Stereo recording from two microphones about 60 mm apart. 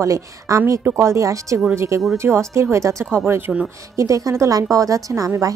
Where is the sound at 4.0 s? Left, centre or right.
Right.